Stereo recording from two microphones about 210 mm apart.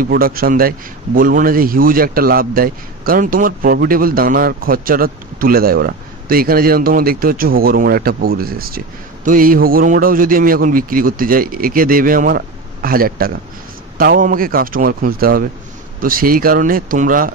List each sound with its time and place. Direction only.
0.0 s speech: 45° right (ahead or behind)